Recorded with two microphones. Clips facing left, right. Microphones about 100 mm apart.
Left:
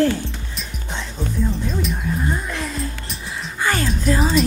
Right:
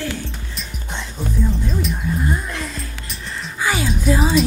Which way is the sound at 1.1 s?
Centre (ahead or behind).